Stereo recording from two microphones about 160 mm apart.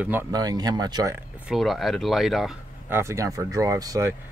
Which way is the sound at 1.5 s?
Centre (ahead or behind).